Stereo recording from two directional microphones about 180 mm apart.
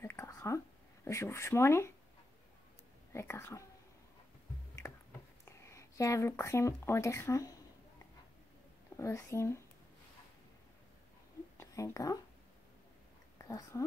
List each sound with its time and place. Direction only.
0.0 s a sound: 15° left (ahead or behind)
1.0 s speech: 15° left (ahead or behind)
3.1 s speech: 15° left (ahead or behind)
5.4 s speech: 15° left (ahead or behind)
8.9 s speech: 15° left (ahead or behind)
11.5 s a sound: 15° left (ahead or behind)
13.4 s speech: 20° left (ahead or behind)